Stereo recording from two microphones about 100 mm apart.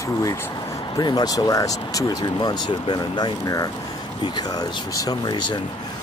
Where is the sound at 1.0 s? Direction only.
40° left (ahead or behind).